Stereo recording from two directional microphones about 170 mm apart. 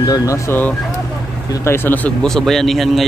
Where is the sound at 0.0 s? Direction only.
20° left (ahead or behind).